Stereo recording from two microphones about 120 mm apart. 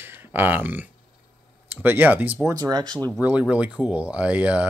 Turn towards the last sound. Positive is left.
turn(degrees=-10)  # may be behind; listen again after turning